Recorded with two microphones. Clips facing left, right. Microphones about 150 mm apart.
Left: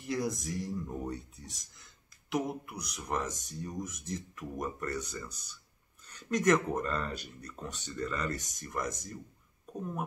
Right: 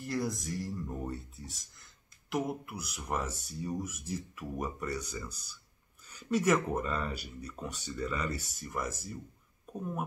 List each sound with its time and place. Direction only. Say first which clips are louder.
0.0 s speech: left 1 dB; centre (ahead or behind)